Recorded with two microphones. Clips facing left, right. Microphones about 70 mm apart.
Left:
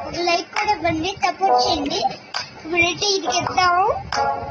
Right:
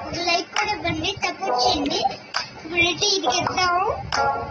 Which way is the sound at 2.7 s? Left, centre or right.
Left.